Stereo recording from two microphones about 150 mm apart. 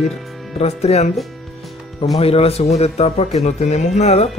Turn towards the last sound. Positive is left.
turn(degrees=45)  # may be behind; listen again after turning